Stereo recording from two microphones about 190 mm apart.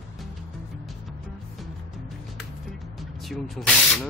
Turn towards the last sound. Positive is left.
turn(degrees=5)  # may be behind; listen again after turning